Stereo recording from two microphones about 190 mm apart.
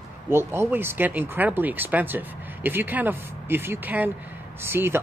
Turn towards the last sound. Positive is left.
turn(degrees=-10)  # may be behind; listen again after turning